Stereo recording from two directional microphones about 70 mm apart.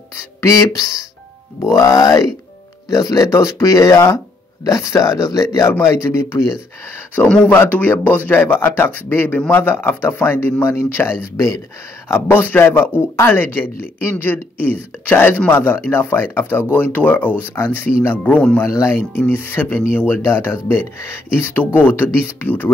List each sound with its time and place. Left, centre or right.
0.1 s speech: left
6.0 s speech: left
7.4 s speech: left
18.6 s speech: left
18.9 s speech: left